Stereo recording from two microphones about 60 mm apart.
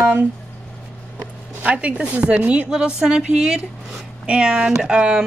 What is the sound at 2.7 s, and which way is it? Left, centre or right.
Speech, centre.